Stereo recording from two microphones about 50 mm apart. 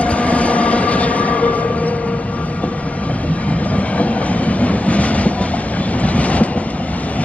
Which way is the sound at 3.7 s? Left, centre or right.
Left.